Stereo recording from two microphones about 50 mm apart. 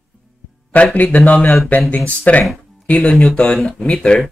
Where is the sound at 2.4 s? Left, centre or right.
Centre.